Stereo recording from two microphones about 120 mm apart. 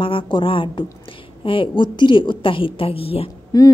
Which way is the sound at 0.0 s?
45° left (ahead or behind).